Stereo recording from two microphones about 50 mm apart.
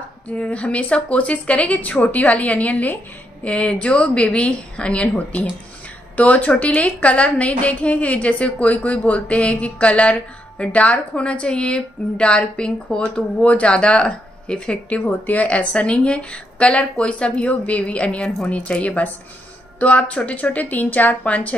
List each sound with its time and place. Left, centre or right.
0.3 s speech: left
14.9 s speech: left